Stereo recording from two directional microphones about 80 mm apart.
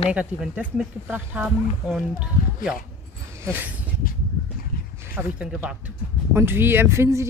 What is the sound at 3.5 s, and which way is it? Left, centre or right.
Speech, right.